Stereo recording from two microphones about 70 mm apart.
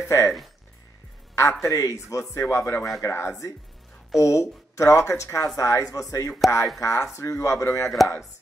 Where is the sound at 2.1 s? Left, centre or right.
Left.